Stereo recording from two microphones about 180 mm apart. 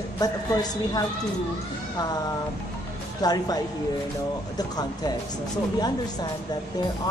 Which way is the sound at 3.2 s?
20° left (ahead or behind).